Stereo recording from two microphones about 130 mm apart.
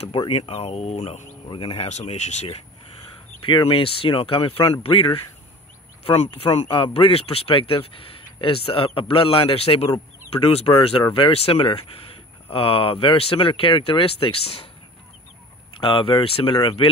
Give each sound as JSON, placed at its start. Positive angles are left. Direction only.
{"t": 0.4, "sound": "speech", "side_deg": 50}
{"t": 1.5, "sound": "speech", "side_deg": 40}
{"t": 1.9, "sound": "speech", "side_deg": 60}
{"t": 3.4, "sound": "speech", "side_deg": 40}
{"t": 15.8, "sound": "speech", "side_deg": 40}